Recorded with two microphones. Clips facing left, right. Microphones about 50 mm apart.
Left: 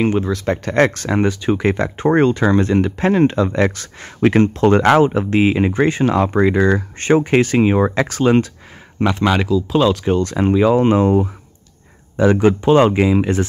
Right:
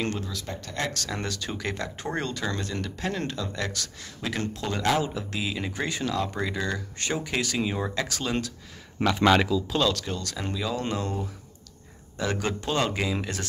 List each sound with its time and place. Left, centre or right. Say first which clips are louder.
0.5 s speech: left 17 dB; left
0.9 s speech: left 14 dB; left
9.1 s speech: left 3 dB; centre
9.7 s speech: left 10 dB; centre
10.0 s speech: left 16 dB; left
12.2 s speech: left 15 dB; left